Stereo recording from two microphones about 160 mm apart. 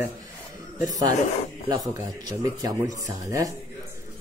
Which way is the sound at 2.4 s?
20° right (ahead or behind).